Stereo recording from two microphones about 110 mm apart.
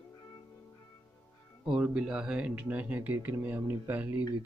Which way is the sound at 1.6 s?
10° right (ahead or behind).